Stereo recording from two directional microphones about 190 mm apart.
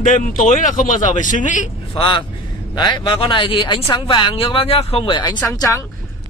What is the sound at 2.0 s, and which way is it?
Speech, 25° left (ahead or behind).